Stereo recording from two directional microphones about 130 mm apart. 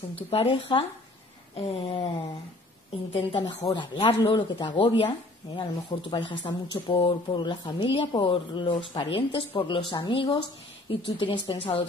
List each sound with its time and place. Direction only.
0.1 s speech: 45° left (ahead or behind)
3.1 s speech: 45° left (ahead or behind)